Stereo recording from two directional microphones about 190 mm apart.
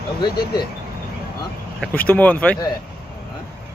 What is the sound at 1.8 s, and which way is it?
Speech, 10° left (ahead or behind).